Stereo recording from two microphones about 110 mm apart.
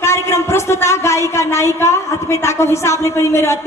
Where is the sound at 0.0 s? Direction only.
25° left (ahead or behind).